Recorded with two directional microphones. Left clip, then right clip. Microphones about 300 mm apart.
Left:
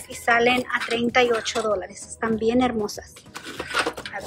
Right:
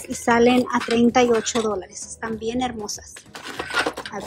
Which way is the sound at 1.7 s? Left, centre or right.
Centre.